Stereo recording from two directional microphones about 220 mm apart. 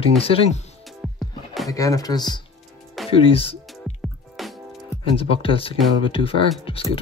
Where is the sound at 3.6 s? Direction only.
Centre (ahead or behind).